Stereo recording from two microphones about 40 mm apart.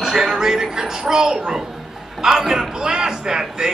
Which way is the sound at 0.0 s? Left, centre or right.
Centre.